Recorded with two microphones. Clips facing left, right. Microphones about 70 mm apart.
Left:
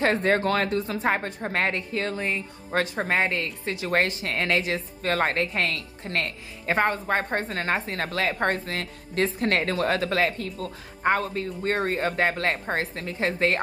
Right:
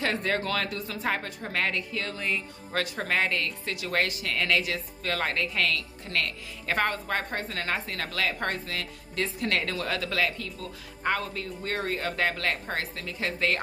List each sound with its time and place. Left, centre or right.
0.0 s a woman's voice: left